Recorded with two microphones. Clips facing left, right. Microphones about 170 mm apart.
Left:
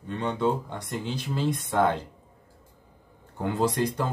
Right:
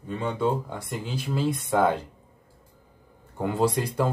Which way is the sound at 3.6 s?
10° right (ahead or behind).